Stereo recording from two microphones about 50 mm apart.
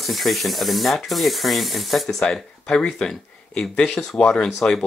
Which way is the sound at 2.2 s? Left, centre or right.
Centre.